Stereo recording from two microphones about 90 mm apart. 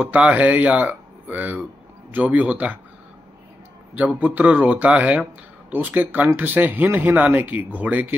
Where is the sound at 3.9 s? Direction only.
20° right (ahead or behind).